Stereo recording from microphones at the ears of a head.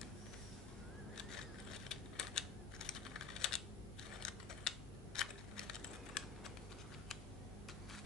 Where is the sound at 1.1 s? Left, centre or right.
Left.